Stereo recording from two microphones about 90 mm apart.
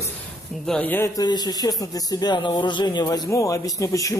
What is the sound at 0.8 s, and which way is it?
Speech, 20° left (ahead or behind).